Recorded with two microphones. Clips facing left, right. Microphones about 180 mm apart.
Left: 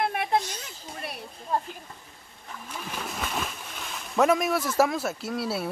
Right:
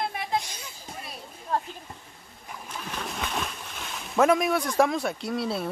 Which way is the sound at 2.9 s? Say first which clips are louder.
Even; 5° left (ahead or behind).